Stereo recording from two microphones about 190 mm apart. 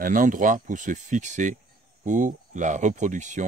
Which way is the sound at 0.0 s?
45° right (ahead or behind).